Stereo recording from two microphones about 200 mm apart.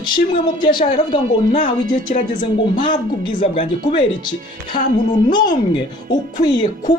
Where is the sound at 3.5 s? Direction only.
25° left (ahead or behind).